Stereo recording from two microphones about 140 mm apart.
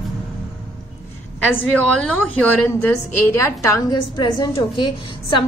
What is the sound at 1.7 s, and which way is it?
A woman's voice, 5° left (ahead or behind).